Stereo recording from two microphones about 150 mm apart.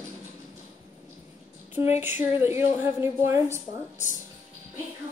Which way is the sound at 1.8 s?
20° right (ahead or behind).